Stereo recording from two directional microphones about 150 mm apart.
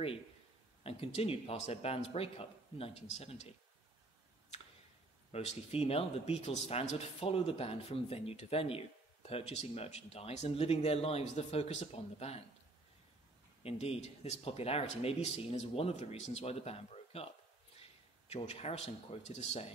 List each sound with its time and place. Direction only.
0.8 s speech: 40° left (ahead or behind)
5.3 s speech: 40° left (ahead or behind)
13.6 s speech: 40° left (ahead or behind)
18.3 s speech: 45° left (ahead or behind)